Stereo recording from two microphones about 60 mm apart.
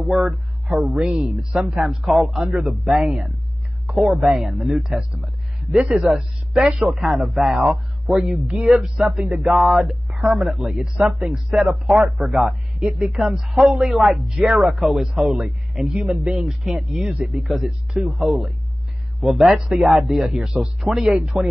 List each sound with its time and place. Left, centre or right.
0.1 s a man's voice: centre
9.6 s a man's voice: centre
11.0 s speech: right
11.2 s a man's voice: centre
15.1 s speech: right
15.4 s a man's voice: centre